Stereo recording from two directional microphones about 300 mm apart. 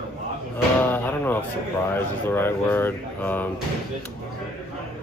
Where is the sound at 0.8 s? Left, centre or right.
Centre.